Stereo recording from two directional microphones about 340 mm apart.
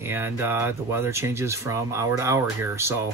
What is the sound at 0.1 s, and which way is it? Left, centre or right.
Speech, centre.